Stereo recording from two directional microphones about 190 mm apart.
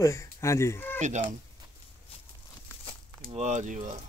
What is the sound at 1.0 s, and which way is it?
Speech, 40° right (ahead or behind).